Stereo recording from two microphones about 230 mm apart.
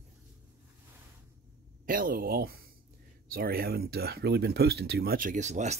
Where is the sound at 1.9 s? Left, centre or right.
Right.